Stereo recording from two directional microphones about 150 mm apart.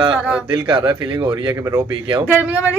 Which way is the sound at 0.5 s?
30° right (ahead or behind).